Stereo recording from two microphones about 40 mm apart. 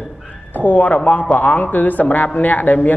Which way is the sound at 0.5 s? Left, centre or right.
Left.